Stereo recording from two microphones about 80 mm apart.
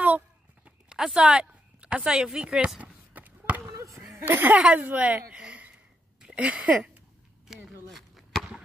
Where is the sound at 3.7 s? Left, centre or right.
Right.